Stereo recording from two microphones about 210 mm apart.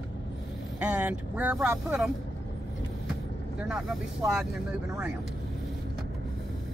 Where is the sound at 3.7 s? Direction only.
5° right (ahead or behind).